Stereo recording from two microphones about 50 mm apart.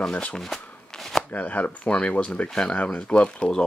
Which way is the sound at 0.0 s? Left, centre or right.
Centre.